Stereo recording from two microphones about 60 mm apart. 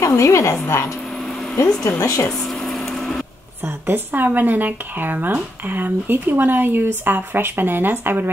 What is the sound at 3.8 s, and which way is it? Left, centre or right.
A woman's voice, right.